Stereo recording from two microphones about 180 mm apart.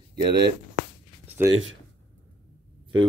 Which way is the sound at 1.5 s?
90° right.